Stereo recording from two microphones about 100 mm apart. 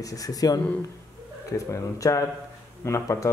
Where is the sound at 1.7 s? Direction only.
35° left (ahead or behind).